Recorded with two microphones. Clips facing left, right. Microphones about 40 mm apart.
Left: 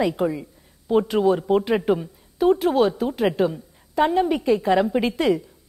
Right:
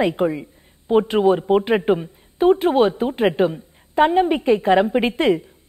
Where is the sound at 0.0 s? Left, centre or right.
Right.